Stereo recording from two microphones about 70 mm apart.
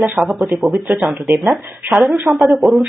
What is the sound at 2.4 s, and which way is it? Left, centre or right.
Speech, centre.